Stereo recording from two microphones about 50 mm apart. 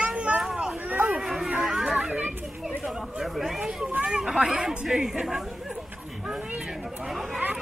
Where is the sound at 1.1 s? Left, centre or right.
Centre.